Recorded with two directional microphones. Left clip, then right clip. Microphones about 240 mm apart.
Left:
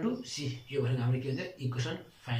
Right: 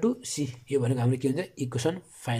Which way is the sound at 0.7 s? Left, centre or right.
Right.